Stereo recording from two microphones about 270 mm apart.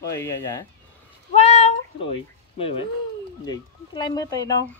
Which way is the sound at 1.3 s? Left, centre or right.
Left.